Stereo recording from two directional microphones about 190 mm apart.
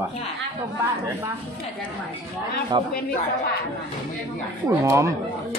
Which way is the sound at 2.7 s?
25° right (ahead or behind).